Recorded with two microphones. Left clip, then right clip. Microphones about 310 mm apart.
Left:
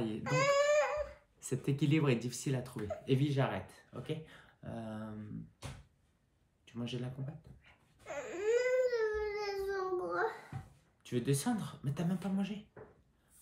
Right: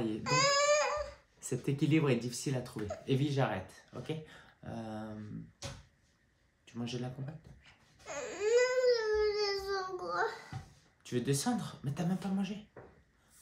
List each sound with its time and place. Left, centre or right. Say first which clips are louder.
0.2 s baby cry: right 1 dB; right
1.4 s speech: right 1 dB; centre
6.7 s speech: right 2 dB; centre
8.1 s baby cry: right 3 dB; right
11.1 s speech: right 1 dB; centre